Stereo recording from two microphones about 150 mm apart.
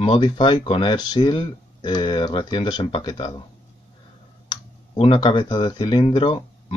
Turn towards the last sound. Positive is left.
turn(degrees=35)  # may be behind; listen again after turning